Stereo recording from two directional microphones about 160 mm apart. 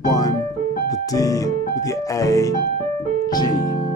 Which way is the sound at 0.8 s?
20° left (ahead or behind).